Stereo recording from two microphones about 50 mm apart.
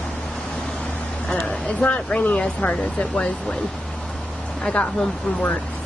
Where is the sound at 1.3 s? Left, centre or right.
Left.